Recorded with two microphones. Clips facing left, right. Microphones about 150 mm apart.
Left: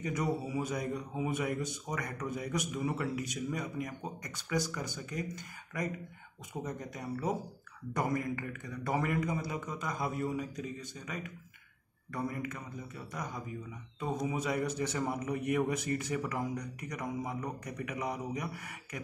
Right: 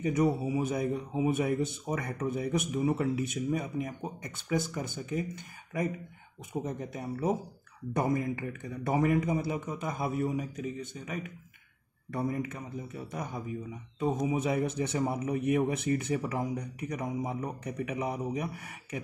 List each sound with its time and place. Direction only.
0.0 s a man's voice: 25° right (ahead or behind)
6.6 s a man's voice: 25° right (ahead or behind)
12.1 s a man's voice: 25° right (ahead or behind)